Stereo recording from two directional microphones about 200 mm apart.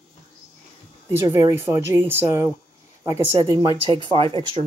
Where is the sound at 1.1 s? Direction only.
15° right (ahead or behind).